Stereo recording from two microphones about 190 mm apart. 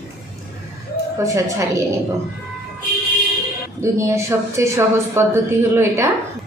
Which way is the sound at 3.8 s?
15° right (ahead or behind).